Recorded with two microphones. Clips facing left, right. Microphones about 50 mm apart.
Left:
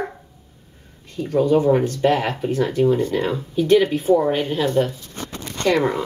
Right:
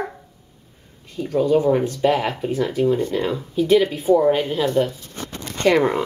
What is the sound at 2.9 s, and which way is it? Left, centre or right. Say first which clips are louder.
Speech: left 1 dB; centre.